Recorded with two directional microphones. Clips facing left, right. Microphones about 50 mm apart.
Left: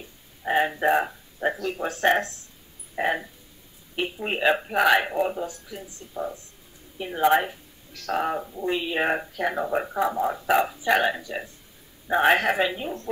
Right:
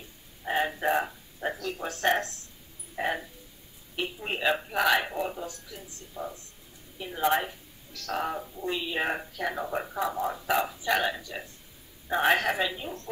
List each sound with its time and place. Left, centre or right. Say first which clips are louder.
0.5 s speech: left 5 dB; left